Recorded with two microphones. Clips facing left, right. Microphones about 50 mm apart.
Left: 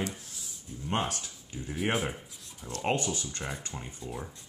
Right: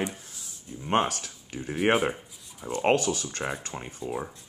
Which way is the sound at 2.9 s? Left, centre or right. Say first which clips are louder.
Right 5 dB; right.